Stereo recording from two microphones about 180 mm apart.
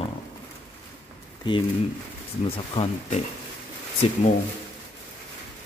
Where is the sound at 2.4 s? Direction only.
35° left (ahead or behind).